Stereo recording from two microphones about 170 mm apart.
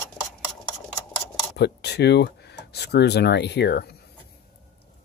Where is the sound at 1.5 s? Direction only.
75° left (ahead or behind).